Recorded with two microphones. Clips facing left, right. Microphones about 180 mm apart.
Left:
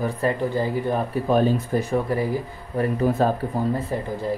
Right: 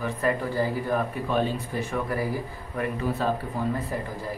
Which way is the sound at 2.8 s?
45° left (ahead or behind).